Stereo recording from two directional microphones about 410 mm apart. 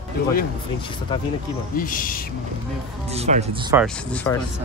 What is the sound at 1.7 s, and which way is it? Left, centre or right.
Speech, centre.